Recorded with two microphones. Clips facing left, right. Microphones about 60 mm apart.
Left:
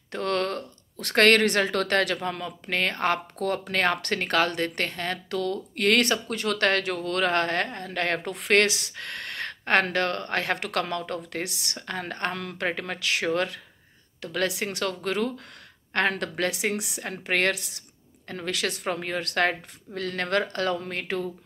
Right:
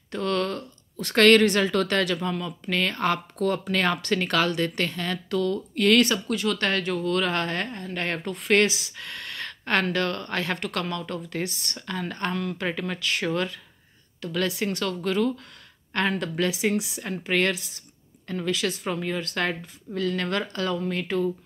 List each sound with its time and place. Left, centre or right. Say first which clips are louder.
0.1 s a sound: right 1 dB; left
1.0 s a woman's voice: right 2 dB; left
10.6 s speech: left 1 dB; left
11.3 s a woman's voice: right 2 dB; left
11.8 s speech: right 1 dB; left
14.5 s speech: right 2 dB; left
15.0 s a woman's voice: right 3 dB; left